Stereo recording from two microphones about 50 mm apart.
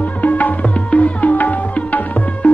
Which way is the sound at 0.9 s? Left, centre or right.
Left.